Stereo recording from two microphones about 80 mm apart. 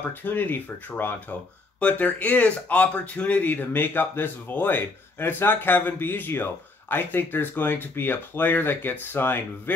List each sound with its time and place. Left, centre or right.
0.1 s speech: left